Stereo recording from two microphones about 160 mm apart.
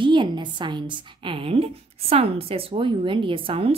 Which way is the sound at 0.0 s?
30° right (ahead or behind).